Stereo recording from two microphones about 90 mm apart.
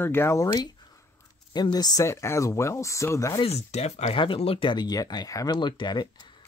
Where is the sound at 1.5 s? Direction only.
50° left (ahead or behind).